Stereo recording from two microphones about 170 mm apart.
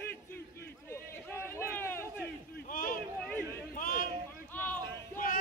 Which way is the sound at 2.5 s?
55° left (ahead or behind).